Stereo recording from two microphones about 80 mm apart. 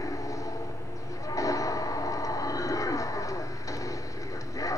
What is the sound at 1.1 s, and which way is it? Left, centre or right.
Train, left.